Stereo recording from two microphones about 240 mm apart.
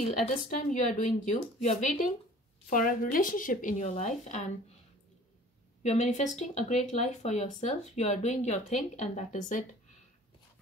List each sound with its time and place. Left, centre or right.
0.2 s a woman's voice: left
5.8 s speech: left